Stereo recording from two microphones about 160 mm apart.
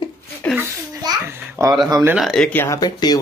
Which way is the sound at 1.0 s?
20° right (ahead or behind).